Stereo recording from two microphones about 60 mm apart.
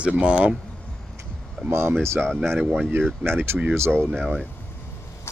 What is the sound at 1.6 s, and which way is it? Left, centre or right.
Speech, right.